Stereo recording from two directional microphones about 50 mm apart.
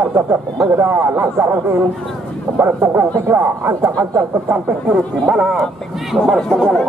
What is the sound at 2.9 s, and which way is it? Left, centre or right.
Speech, right.